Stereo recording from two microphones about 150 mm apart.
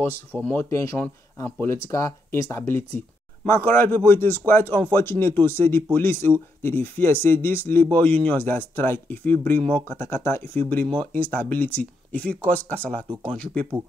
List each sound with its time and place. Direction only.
0.4 s speech: 10° left (ahead or behind)